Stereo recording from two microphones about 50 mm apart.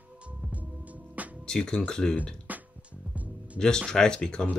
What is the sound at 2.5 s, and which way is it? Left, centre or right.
Music, right.